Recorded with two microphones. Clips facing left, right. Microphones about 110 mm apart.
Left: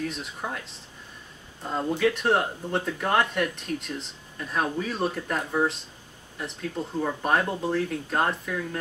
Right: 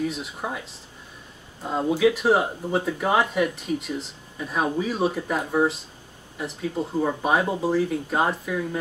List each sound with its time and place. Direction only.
0.0 s speech: 5° right (ahead or behind)